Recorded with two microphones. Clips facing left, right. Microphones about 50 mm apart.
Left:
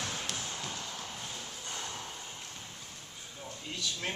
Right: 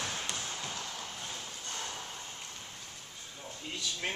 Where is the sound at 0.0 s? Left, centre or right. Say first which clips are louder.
Even; centre.